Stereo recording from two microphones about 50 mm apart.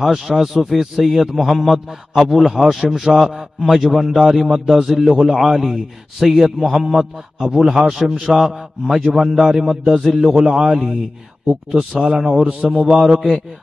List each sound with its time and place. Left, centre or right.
0.4 s a man's voice: centre